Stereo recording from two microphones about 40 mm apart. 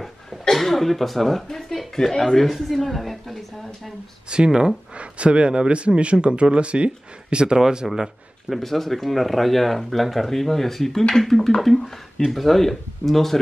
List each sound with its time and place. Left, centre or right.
0.0 s a sound: centre
2.0 s speech: centre
4.5 s speech: centre
4.9 s speech: right
8.5 s speech: centre